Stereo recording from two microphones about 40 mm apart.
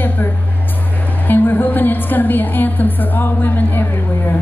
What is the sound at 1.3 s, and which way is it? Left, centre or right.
Speech, left.